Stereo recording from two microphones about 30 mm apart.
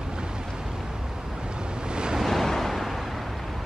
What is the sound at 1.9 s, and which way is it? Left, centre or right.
Waves, right.